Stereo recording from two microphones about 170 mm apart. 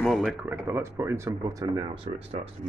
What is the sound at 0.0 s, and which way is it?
Speech, centre (ahead or behind).